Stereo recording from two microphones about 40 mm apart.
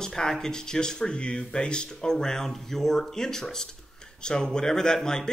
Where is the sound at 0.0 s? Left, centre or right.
Centre.